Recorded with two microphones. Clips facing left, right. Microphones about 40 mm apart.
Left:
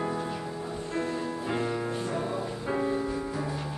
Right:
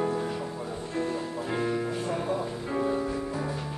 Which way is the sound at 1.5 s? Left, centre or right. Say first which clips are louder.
Right 3 dB; centre.